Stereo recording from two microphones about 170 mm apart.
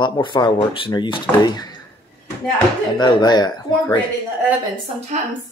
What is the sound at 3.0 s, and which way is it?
Speech, 25° left (ahead or behind).